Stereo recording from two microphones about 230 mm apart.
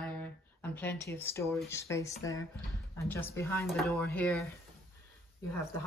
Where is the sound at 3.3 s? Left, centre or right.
Centre.